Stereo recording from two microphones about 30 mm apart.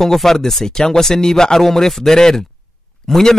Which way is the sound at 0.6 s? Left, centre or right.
Left.